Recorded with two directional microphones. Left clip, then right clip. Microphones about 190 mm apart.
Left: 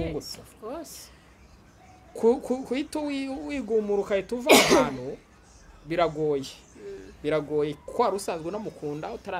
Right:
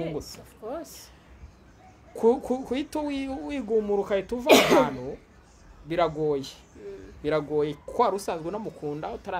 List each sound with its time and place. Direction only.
0.0 s a sound: 15° left (ahead or behind)
2.1 s speech: centre (ahead or behind)
4.5 s speech: 15° left (ahead or behind)
5.9 s speech: centre (ahead or behind)